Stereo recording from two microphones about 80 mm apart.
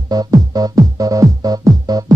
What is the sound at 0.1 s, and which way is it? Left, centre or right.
Music, right.